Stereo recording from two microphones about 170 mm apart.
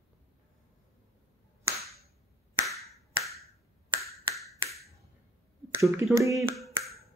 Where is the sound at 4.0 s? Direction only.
Centre (ahead or behind).